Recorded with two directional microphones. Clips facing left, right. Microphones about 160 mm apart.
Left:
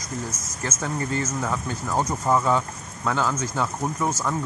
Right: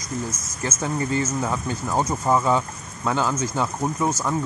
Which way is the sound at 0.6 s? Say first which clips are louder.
Right 3 dB; 15° right (ahead or behind).